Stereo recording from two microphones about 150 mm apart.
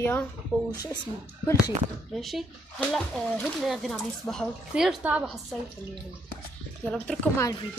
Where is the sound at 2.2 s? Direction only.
Centre (ahead or behind).